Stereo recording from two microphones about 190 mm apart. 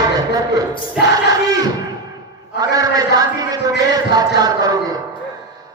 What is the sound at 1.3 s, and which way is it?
Crowd, 20° right (ahead or behind).